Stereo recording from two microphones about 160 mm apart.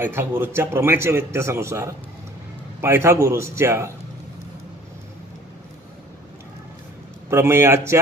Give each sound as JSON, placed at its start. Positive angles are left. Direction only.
{"t": 0.0, "sound": "a man's voice", "side_deg": -15}
{"t": 7.2, "sound": "a man's voice", "side_deg": -15}